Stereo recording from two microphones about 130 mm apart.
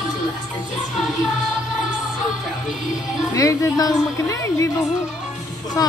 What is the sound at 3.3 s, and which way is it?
A woman's voice, 25° left (ahead or behind).